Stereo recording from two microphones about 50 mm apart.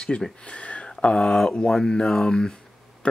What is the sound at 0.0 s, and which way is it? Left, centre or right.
Speech, centre.